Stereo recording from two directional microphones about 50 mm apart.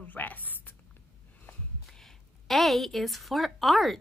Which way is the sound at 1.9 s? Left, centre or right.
Centre.